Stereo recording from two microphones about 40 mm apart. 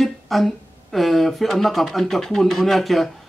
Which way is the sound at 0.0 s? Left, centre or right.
Centre.